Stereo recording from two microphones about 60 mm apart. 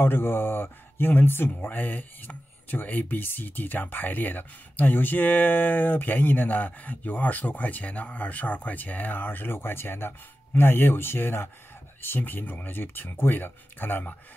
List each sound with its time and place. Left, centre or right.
0.0 s speech: left